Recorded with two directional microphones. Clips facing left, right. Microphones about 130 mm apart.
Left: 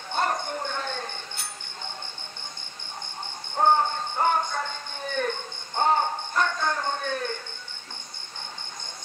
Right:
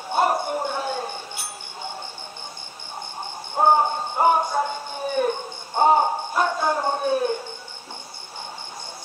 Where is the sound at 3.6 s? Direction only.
15° right (ahead or behind).